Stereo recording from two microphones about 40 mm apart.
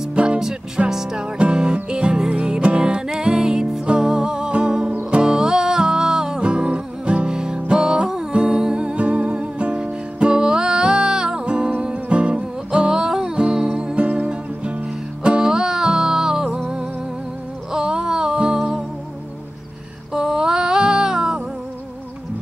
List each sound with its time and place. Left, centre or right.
0.1 s music: right
0.4 s music: centre
13.9 s music: right
20.1 s a sound: centre